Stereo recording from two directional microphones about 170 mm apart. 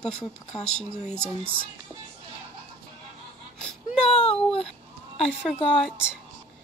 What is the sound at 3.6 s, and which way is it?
Baby cry, 5° left (ahead or behind).